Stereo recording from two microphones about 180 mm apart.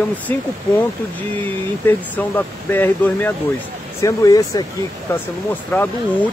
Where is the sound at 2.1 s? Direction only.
10° left (ahead or behind).